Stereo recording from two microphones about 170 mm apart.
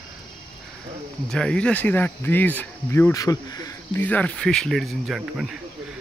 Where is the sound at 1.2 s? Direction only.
5° left (ahead or behind).